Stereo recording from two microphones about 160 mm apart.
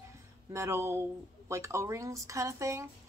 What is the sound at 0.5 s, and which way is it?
Speech, 15° right (ahead or behind).